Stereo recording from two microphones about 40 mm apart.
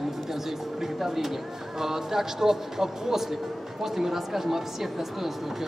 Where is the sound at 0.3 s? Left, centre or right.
Centre.